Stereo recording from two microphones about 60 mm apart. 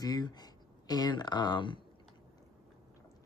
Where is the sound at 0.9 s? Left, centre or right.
Left.